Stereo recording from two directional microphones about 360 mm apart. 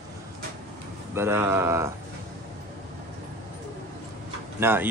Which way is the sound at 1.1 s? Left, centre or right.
Centre.